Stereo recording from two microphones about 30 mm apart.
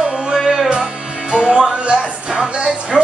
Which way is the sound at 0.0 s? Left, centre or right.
Right.